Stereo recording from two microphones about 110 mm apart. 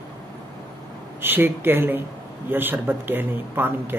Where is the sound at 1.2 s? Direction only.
20° right (ahead or behind).